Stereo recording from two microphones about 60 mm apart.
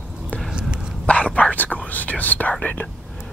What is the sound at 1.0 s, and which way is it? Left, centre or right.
Whispering, left.